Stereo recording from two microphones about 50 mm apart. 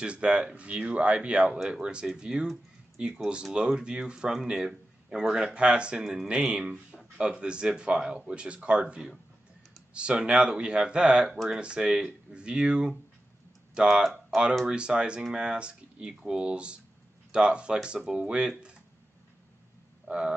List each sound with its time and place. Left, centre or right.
0.0 s speech: right
14.0 s speech: centre
14.7 s speech: centre
20.1 s grunt: centre